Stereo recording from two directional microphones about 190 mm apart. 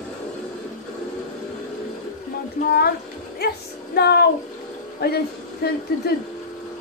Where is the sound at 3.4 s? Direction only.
55° left (ahead or behind).